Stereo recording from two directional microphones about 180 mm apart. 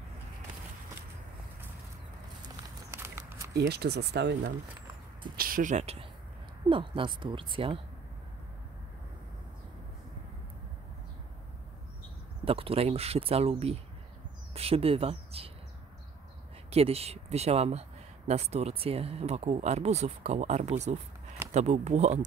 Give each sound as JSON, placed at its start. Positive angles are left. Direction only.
{"t": 2.4, "sound": "a sound", "side_deg": -15}
{"t": 3.5, "sound": "speech", "side_deg": -65}
{"t": 5.2, "sound": "speech", "side_deg": -50}
{"t": 12.4, "sound": "speech", "side_deg": -30}
{"t": 16.7, "sound": "speech", "side_deg": -35}